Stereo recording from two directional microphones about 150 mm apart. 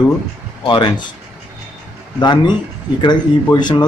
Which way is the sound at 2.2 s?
30° left (ahead or behind).